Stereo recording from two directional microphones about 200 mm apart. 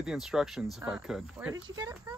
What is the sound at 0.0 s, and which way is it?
Speech, 5° right (ahead or behind).